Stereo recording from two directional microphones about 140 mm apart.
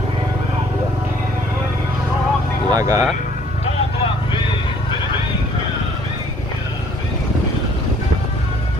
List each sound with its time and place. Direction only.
2.7 s speech: 25° right (ahead or behind)
3.6 s vehicle: 35° left (ahead or behind)